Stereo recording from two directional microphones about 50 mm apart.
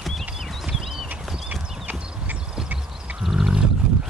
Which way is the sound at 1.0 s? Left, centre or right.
Right.